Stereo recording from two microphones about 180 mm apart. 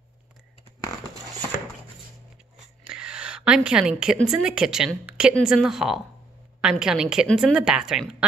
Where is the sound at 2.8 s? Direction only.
5° right (ahead or behind).